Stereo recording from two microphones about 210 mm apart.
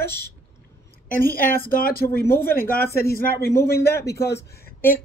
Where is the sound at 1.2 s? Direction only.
40° left (ahead or behind).